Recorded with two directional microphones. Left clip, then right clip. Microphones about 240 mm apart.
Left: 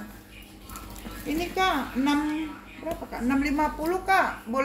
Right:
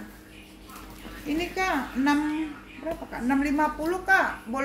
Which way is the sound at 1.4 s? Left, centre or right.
Centre.